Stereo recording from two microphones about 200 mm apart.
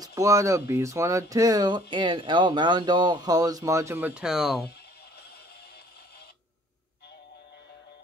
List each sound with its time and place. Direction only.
0.0 s speech: 15° right (ahead or behind)